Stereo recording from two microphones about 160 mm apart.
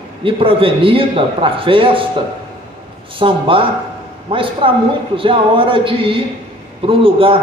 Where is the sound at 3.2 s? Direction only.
35° right (ahead or behind).